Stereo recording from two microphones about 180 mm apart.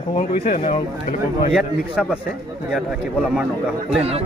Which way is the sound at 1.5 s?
5° right (ahead or behind).